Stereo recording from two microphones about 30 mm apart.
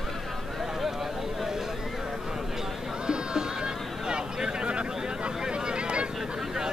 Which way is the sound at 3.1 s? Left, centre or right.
Right.